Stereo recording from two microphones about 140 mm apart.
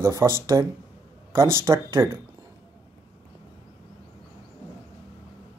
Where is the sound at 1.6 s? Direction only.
20° right (ahead or behind).